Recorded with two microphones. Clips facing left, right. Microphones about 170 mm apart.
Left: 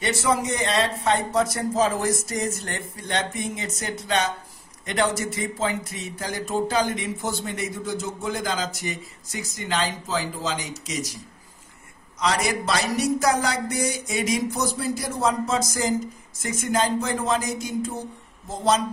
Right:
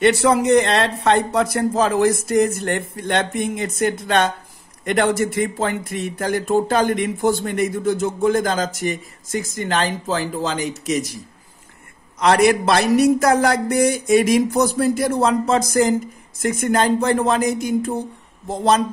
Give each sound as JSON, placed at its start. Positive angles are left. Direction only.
{"t": 0.0, "sound": "speech", "side_deg": -65}
{"t": 12.2, "sound": "speech", "side_deg": -60}